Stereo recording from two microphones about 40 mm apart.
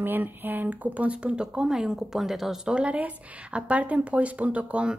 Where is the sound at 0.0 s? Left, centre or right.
Right; by 2.6 s centre.